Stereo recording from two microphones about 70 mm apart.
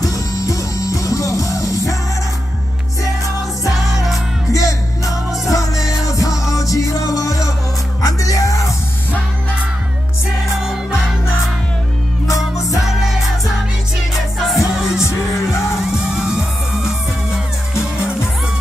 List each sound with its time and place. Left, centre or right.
0.0 s music: left
3.9 s music: centre
4.5 s music: left
5.8 s music: centre
6.0 s music: left
10.4 s music: centre
12.7 s music: centre